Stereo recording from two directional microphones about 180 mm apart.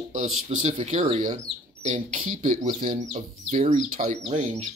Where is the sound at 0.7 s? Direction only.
30° right (ahead or behind).